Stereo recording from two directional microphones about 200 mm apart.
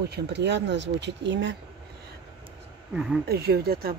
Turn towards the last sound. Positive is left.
turn(degrees=-50)  # may be behind; listen again after turning